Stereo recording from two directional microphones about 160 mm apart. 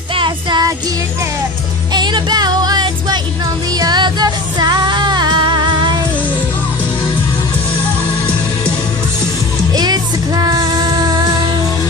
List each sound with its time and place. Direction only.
0.1 s music: 30° right (ahead or behind)
2.0 s music: 30° right (ahead or behind)
9.8 s music: 25° right (ahead or behind)